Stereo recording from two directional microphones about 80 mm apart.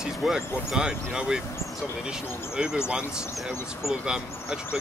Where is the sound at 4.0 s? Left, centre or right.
Centre.